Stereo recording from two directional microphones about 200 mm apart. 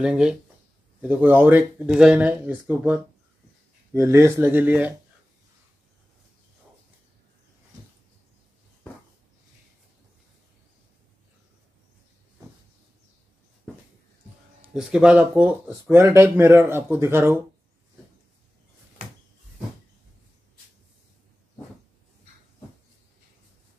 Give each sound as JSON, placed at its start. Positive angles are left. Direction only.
{"t": 0.0, "sound": "speech", "side_deg": -5}
{"t": 14.7, "sound": "speech", "side_deg": -5}